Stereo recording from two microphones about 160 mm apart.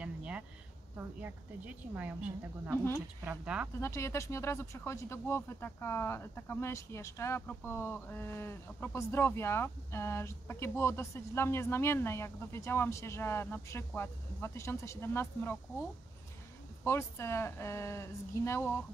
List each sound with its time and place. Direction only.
0.0 s a sound: 5° right (ahead or behind)
2.0 s a woman's voice: 10° right (ahead or behind)
3.8 s speech: 15° left (ahead or behind)
16.8 s speech: 15° left (ahead or behind)